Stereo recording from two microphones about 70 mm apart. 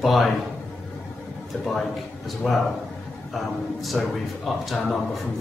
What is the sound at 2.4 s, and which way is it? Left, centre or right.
Speech, centre.